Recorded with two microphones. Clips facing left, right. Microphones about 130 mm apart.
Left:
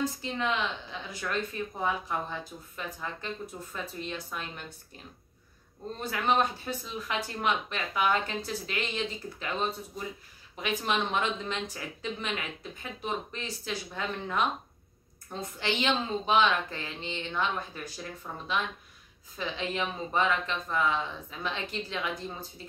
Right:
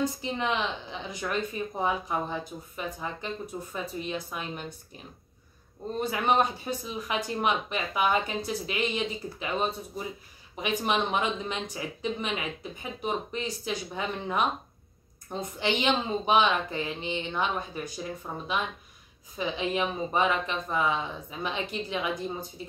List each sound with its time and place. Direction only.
0.0 s speech: 15° right (ahead or behind)